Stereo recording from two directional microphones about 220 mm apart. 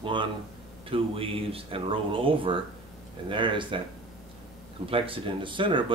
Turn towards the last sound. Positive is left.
turn(degrees=-20)  # may be behind; listen again after turning